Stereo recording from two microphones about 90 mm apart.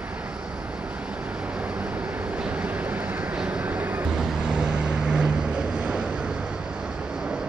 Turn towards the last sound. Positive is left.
turn(degrees=-10)  # may be behind; listen again after turning